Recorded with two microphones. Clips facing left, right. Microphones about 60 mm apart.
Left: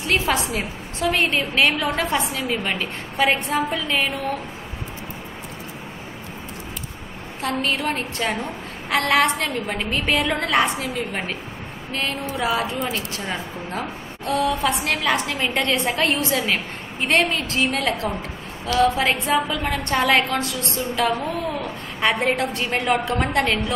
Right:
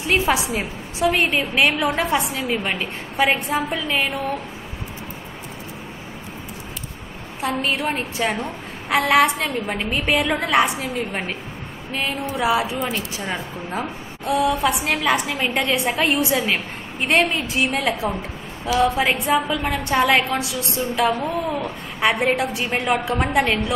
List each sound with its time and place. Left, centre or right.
0.3 s a woman's voice: centre
7.4 s a woman's voice: centre